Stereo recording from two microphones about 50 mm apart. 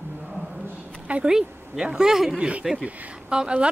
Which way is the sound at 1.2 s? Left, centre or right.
Centre.